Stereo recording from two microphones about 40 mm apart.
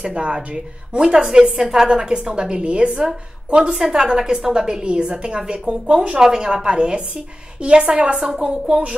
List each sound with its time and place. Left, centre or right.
0.0 s a woman's voice: right
1.1 s a woman's voice: centre